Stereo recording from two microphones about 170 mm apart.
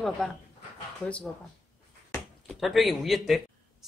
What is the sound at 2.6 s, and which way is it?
A man's voice, centre (ahead or behind).